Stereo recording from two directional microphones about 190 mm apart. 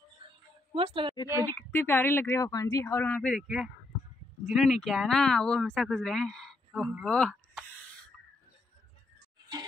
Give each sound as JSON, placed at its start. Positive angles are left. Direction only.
{"t": 0.2, "sound": "a sound", "side_deg": -25}
{"t": 0.7, "sound": "a woman's voice", "side_deg": -25}
{"t": 1.5, "sound": "speech", "side_deg": 10}